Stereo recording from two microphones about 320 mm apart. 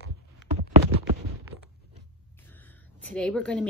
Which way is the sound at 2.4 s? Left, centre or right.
Centre.